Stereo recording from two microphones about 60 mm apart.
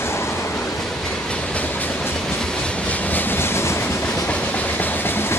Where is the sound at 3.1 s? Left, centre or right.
Left.